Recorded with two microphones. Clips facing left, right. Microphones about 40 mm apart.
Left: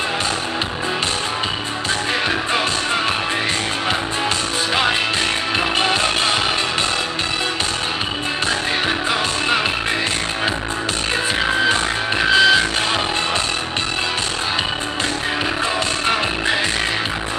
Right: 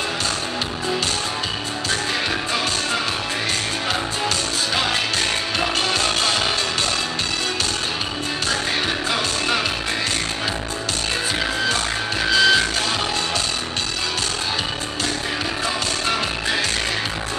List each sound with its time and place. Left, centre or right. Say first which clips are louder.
5.6 s music: left 3 dB; left
11.6 s music: left 4 dB; left